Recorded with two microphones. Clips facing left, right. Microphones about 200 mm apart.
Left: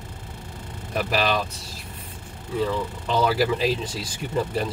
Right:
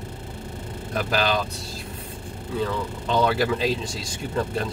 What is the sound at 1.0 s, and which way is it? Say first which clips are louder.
Speech: even; 5° left (ahead or behind).